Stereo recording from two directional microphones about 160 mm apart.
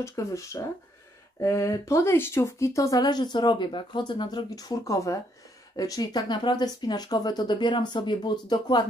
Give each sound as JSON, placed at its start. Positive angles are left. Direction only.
{"t": 0.0, "sound": "speech", "side_deg": 20}